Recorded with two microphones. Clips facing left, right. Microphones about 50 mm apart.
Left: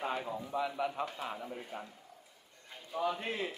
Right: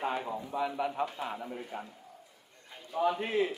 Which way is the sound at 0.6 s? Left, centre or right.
Right.